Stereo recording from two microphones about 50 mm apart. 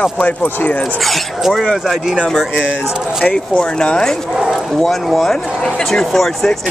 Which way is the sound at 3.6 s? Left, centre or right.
Centre.